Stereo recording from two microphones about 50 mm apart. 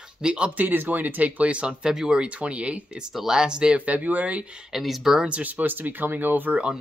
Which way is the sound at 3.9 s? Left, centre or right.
Right.